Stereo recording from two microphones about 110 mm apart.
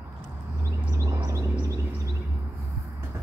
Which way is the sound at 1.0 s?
30° right (ahead or behind).